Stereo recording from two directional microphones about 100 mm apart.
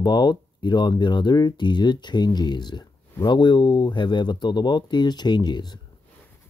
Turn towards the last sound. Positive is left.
turn(degrees=45)  # may be behind; listen again after turning